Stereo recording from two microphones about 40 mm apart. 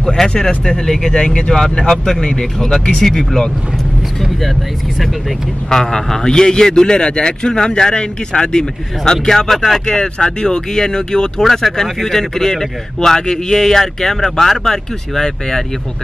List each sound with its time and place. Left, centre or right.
0.0 s a man's voice: centre
5.7 s a man's voice: centre
9.9 s a man's voice: centre